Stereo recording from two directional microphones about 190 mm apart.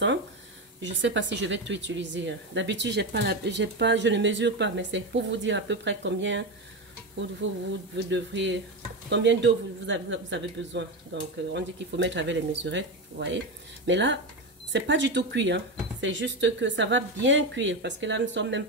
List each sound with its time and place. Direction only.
0.7 s speech: 70° right (ahead or behind)